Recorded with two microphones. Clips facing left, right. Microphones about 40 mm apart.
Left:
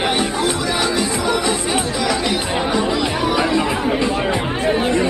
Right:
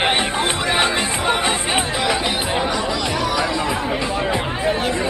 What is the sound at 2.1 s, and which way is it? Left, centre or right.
Chatter, right.